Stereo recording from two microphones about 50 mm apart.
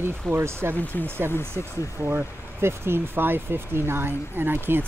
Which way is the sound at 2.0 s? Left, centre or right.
Right.